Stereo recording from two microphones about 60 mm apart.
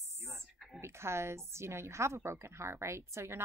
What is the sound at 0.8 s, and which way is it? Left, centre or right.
A woman's voice, right.